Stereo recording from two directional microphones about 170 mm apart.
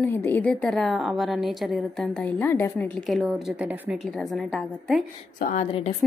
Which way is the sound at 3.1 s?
5° right (ahead or behind).